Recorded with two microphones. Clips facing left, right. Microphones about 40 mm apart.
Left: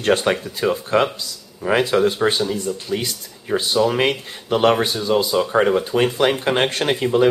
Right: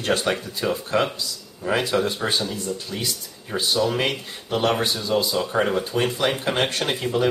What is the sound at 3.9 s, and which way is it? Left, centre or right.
Speech, left.